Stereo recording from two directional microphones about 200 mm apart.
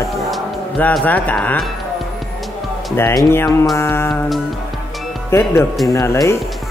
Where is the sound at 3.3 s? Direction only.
15° left (ahead or behind).